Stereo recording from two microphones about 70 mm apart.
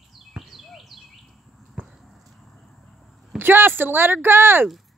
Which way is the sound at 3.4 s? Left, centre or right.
Right.